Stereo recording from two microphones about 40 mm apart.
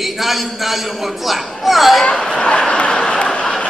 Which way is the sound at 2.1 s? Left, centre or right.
Centre.